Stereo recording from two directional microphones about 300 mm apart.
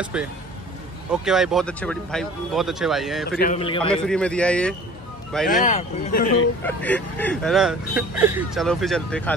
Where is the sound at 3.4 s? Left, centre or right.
Left.